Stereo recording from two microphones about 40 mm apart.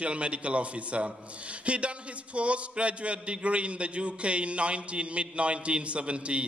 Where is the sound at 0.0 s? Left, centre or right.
Right.